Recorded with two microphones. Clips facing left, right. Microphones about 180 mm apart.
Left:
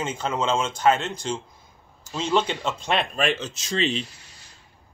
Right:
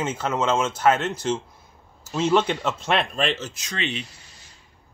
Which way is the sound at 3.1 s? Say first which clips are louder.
Left 1 dB; 10° left (ahead or behind).